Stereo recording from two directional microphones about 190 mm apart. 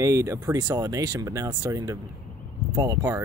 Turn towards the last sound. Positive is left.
turn(degrees=-15)  # may be behind; listen again after turning